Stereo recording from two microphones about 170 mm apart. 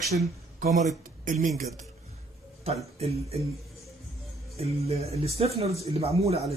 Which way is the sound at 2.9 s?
35° right (ahead or behind).